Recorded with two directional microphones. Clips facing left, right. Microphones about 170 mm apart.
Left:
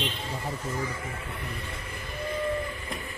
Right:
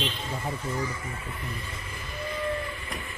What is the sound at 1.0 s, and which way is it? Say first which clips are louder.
Speech: even; 60° left (ahead or behind).